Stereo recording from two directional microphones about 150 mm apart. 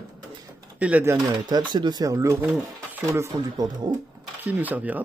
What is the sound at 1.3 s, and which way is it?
Speech, 30° right (ahead or behind).